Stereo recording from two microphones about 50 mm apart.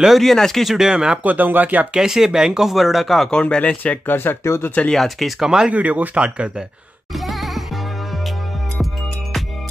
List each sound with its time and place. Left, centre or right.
0.2 s speech: centre
0.7 s speech: centre
1.2 s speech: right
2.0 s speech: centre
3.3 s speech: centre
3.6 s speech: left
4.4 s speech: left
4.9 s speech: centre
5.4 s speech: centre
5.7 s speech: right
7.2 s music: centre